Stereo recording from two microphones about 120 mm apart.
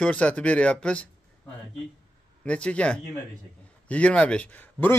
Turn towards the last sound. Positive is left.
turn(degrees=15)  # may be behind; listen again after turning